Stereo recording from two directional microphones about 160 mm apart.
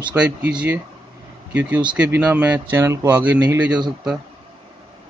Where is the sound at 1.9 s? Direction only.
10° right (ahead or behind).